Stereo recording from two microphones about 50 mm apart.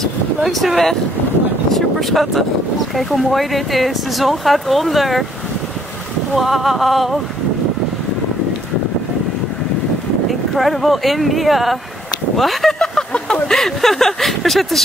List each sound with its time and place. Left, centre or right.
0.4 s speech: centre
6.3 s speech: centre
10.5 s speech: centre
12.7 s a sound: centre
13.6 s speech: centre